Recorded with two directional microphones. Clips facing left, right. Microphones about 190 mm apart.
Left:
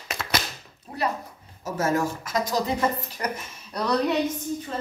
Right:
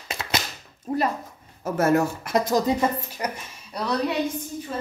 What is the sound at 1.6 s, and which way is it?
Speech, 60° right (ahead or behind).